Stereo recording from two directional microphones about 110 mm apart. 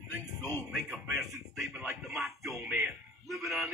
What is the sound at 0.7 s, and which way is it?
Speech, 5° right (ahead or behind).